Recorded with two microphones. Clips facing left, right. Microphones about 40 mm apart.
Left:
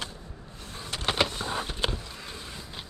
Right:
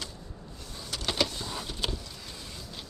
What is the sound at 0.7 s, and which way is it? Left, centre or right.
Vehicle, left.